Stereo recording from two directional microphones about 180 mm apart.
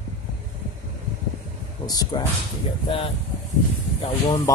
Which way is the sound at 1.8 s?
20° left (ahead or behind).